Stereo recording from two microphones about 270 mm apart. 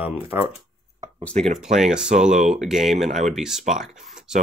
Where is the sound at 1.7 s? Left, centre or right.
Centre.